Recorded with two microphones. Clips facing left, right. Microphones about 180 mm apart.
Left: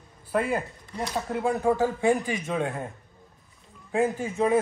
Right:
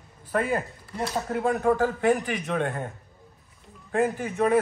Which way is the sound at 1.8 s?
15° left (ahead or behind).